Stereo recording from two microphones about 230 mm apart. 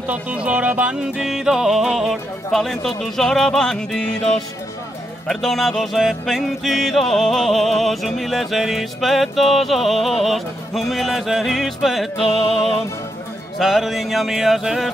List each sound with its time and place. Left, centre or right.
0.0 s music: centre
5.3 s music: centre
12.2 s music: left
13.6 s music: centre